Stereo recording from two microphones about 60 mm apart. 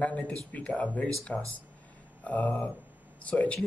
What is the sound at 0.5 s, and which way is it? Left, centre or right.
Speech, left.